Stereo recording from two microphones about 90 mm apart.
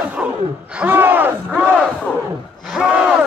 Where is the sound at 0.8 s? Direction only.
20° right (ahead or behind).